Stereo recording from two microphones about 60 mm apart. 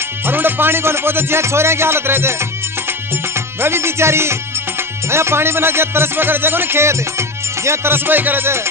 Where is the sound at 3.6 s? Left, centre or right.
Right.